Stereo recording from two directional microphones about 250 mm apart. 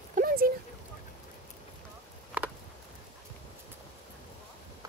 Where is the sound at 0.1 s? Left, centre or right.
Right.